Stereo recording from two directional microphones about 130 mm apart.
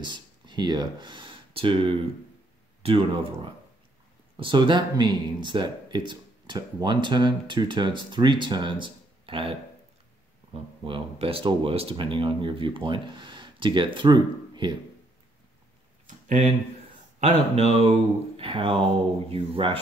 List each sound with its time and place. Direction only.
0.0 s speech: 35° right (ahead or behind)
16.1 s a sound: 70° right (ahead or behind)
17.2 s speech: 55° right (ahead or behind)